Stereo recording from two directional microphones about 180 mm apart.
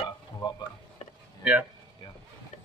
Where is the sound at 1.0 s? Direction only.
40° left (ahead or behind).